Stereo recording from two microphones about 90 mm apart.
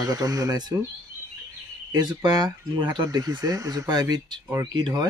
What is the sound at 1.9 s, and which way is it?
Speech, 50° right (ahead or behind).